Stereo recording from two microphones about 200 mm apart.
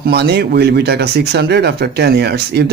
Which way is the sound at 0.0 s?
55° right (ahead or behind).